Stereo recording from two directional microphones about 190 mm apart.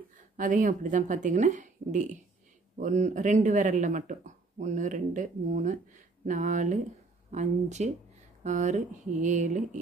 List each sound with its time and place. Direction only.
0.4 s speech: 40° right (ahead or behind)